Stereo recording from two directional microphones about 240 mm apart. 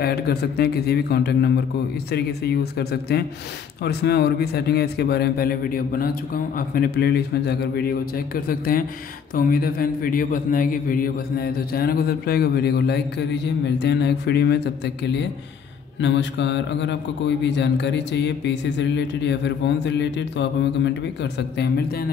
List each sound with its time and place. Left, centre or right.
0.0 s a man's voice: left